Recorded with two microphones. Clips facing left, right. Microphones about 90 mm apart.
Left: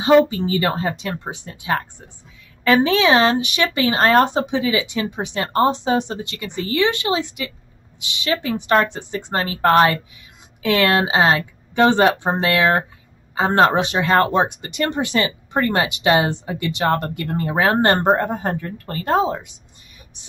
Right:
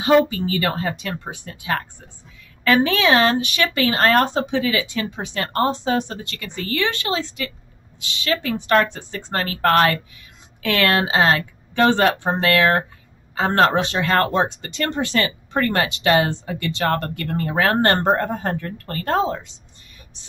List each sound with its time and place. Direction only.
0.0 s speech: 25° left (ahead or behind)